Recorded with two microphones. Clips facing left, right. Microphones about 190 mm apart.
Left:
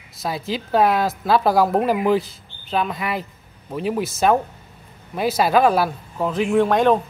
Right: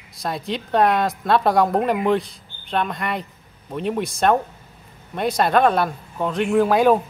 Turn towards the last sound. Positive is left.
turn(degrees=-5)  # may be behind; listen again after turning